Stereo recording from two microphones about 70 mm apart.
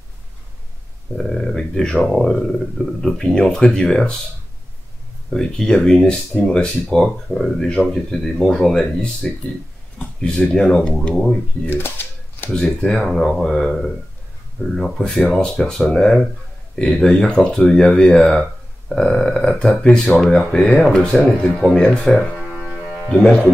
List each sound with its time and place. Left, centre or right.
1.1 s speech: centre
2.1 s speech: centre
5.3 s speech: centre
9.9 s speech: centre
10.4 s speech: centre
11.6 s typewriter: left
12.4 s speech: centre
22.1 s speech: centre